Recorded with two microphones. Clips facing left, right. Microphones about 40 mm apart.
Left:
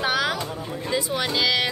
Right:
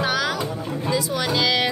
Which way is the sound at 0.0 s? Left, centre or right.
Centre.